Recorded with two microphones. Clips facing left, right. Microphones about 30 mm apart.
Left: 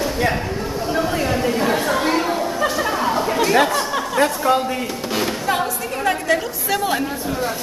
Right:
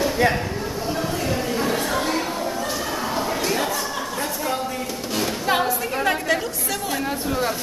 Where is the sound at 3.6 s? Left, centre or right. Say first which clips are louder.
Left 7 dB; left.